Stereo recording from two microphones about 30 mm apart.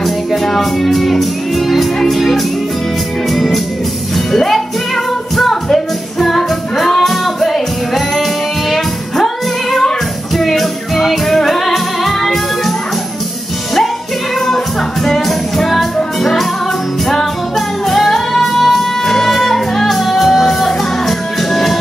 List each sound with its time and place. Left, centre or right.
0.0 s music: centre
15.0 s music: centre